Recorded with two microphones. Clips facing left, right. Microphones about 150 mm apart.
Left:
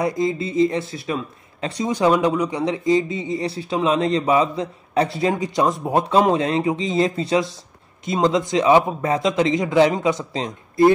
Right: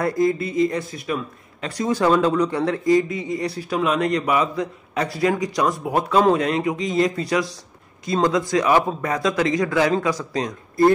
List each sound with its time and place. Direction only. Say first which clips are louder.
0.0 s speech: right 1 dB; 20° left (ahead or behind)